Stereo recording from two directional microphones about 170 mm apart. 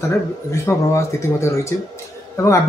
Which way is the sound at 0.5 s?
15° left (ahead or behind).